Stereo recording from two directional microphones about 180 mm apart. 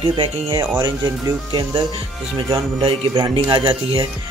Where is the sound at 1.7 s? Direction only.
30° right (ahead or behind).